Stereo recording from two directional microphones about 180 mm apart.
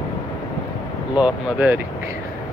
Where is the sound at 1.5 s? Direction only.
10° right (ahead or behind).